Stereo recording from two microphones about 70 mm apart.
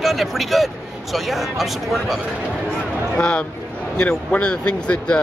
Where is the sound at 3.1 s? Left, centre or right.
Centre.